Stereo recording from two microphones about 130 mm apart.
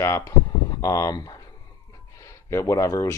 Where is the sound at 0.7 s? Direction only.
25° left (ahead or behind).